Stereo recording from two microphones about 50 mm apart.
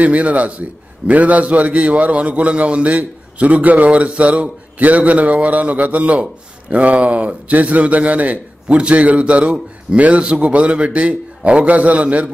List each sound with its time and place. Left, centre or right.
0.0 s a man's voice: right